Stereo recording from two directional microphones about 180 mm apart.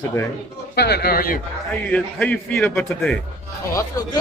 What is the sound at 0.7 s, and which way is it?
Speech, 65° left (ahead or behind).